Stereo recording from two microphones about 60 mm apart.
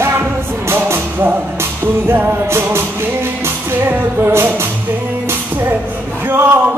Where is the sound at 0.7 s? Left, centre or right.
Right.